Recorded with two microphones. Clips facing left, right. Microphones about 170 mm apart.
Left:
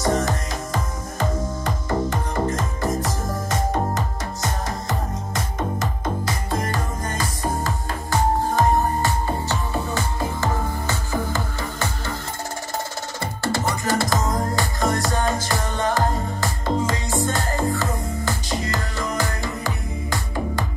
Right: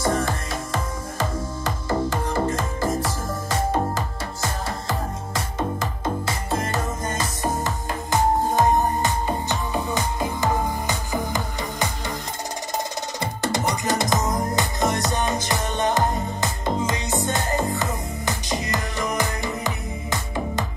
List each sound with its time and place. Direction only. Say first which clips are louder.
1.1 s music: left 3 dB; 30° right (ahead or behind)
6.2 s music: even; 25° right (ahead or behind)
13.2 s music: even; 20° right (ahead or behind)